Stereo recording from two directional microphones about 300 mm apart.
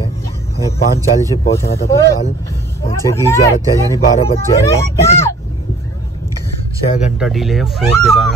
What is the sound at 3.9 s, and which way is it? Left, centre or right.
Speech, left.